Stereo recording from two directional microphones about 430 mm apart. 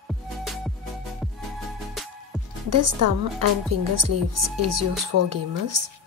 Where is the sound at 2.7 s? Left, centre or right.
Right.